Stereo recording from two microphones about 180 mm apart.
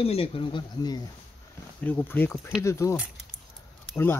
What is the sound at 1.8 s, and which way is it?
Speech, 10° left (ahead or behind).